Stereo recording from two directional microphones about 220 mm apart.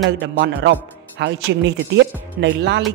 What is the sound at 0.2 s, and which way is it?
A woman's voice, 50° right (ahead or behind).